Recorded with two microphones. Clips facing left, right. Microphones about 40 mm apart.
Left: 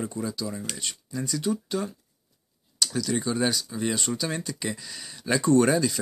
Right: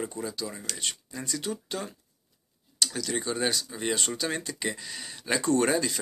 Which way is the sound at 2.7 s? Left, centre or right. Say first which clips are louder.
Left 2 dB; right.